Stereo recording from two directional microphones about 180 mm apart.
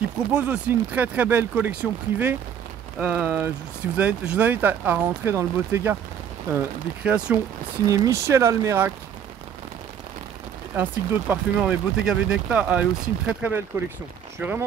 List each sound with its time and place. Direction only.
0.3 s speech: 10° right (ahead or behind)
7.8 s speech: 20° right (ahead or behind)
10.7 s speech: 10° right (ahead or behind)